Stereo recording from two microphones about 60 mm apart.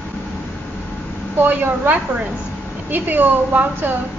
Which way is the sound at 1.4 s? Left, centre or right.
Right.